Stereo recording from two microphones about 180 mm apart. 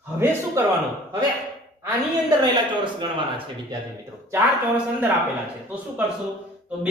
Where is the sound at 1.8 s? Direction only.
20° right (ahead or behind).